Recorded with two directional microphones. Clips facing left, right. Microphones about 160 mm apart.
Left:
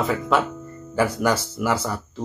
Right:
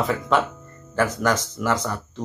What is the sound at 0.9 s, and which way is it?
Speech, 10° left (ahead or behind).